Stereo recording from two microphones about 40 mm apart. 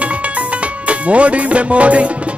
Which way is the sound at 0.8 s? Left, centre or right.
Right.